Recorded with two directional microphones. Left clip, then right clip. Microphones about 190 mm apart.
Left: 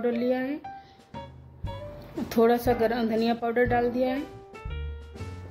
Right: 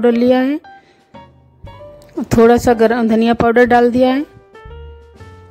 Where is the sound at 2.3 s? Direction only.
55° right (ahead or behind).